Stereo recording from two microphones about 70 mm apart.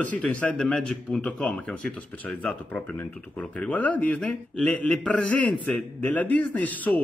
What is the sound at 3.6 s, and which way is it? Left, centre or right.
A man's voice, left.